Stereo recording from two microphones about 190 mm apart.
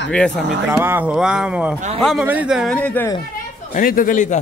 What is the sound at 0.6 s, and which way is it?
Speech, 10° right (ahead or behind).